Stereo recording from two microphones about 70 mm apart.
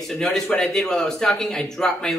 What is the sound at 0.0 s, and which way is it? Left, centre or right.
Speech, centre.